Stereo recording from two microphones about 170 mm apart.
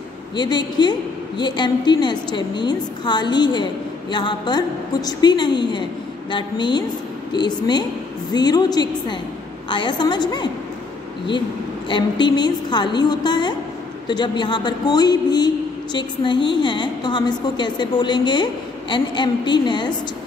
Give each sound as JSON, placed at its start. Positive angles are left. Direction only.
{"t": 0.4, "sound": "a man's voice", "side_deg": 25}
{"t": 11.9, "sound": "a man's voice", "side_deg": 25}